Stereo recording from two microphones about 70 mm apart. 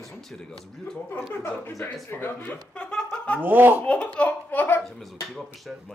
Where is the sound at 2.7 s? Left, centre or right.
Centre.